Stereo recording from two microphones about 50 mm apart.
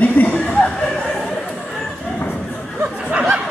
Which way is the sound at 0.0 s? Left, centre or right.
Left.